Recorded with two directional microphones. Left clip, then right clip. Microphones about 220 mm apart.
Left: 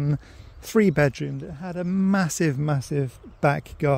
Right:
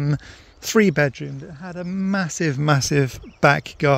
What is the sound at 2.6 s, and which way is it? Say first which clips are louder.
Speech: right 8 dB; 15° right (ahead or behind).